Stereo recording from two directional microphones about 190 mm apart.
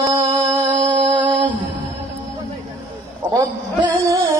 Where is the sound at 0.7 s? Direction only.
40° right (ahead or behind).